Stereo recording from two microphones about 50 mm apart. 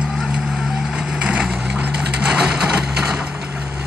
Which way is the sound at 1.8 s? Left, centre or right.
Right.